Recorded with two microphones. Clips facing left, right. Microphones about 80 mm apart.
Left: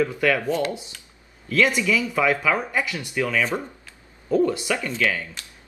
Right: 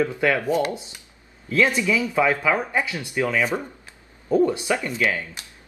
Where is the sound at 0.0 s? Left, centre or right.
Right.